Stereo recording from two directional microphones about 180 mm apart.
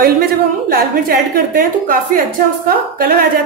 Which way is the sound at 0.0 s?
55° right (ahead or behind).